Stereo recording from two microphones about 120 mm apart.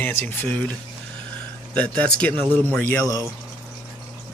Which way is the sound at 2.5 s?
15° left (ahead or behind).